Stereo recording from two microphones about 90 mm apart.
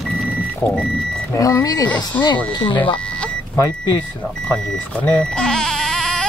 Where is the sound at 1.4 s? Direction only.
40° left (ahead or behind).